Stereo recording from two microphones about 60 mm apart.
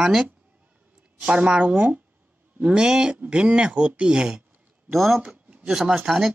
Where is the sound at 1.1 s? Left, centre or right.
Centre.